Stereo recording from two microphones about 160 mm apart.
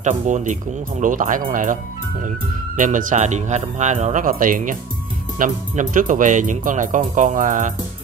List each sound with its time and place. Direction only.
0.0 s speech: 50° right (ahead or behind)